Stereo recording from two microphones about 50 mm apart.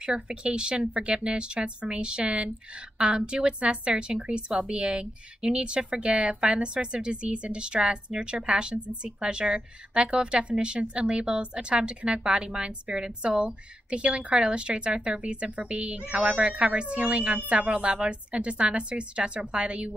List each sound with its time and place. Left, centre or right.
0.0 s a woman's voice: centre